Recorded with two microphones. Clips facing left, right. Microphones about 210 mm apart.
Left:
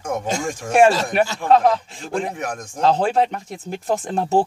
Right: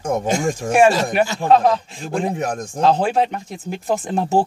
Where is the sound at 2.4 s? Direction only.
30° right (ahead or behind).